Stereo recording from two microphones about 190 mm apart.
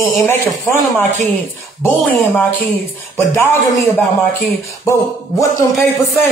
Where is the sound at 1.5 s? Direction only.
10° left (ahead or behind).